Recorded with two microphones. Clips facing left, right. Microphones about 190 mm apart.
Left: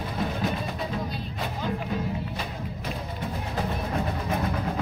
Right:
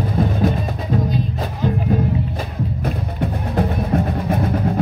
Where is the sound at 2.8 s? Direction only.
55° right (ahead or behind).